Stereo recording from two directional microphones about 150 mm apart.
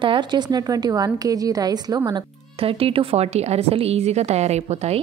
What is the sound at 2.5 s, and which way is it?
A woman's voice, 40° right (ahead or behind).